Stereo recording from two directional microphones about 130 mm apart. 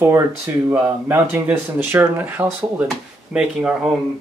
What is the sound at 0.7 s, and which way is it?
Speech, 15° right (ahead or behind).